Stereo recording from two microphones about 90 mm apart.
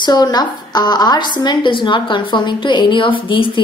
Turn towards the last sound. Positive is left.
turn(degrees=70)  # may be behind; listen again after turning